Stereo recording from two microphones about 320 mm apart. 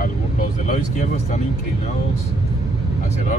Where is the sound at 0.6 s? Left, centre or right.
Left.